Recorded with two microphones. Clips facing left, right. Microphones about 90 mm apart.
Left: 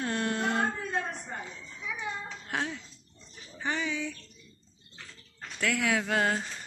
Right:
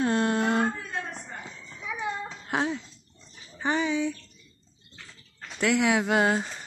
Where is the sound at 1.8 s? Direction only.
20° right (ahead or behind).